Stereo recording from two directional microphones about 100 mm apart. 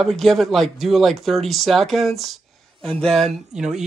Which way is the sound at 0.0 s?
Centre (ahead or behind).